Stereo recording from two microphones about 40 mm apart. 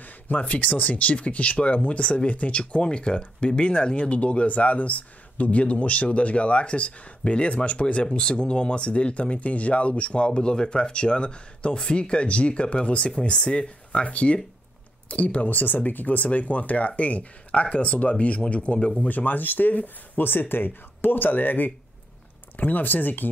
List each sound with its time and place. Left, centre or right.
0.0 s a sound: left
0.4 s speech: left
18.9 s speech: left